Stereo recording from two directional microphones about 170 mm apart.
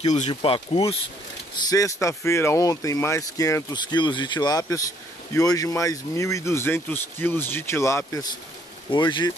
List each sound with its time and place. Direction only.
0.3 s speech: 30° left (ahead or behind)
1.7 s speech: 20° left (ahead or behind)